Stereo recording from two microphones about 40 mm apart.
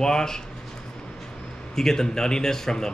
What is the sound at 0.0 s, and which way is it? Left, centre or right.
Speech, centre.